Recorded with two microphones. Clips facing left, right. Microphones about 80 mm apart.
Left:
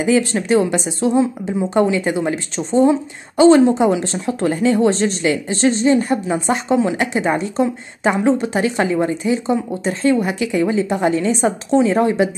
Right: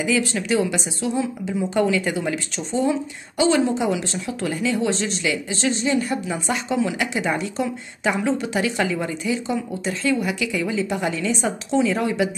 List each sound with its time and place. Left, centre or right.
0.0 s a woman's voice: left